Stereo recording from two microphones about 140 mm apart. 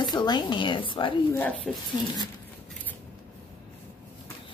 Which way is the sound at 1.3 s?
10° left (ahead or behind).